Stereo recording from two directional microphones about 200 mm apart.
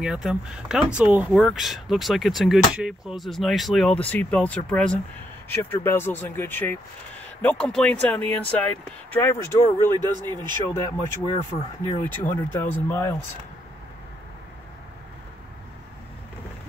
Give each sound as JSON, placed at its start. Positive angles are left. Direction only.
{"t": 0.0, "sound": "speech", "side_deg": -5}